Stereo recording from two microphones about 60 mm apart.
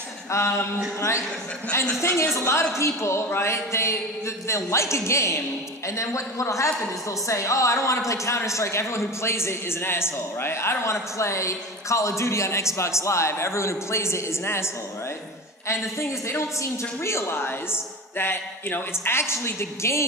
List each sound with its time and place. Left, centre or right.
0.3 s a man's voice: left
2.0 s a man's voice: left
15.7 s a man's voice: left